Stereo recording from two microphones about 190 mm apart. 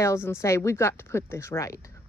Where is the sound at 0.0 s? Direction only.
15° left (ahead or behind).